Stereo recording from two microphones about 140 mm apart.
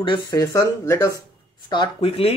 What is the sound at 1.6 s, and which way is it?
Speech, 35° left (ahead or behind).